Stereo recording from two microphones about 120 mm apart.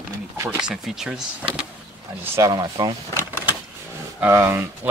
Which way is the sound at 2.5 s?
35° right (ahead or behind).